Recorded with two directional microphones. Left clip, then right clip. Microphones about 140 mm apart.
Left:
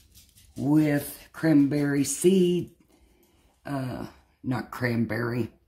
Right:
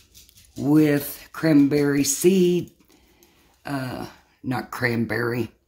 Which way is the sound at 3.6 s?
20° right (ahead or behind).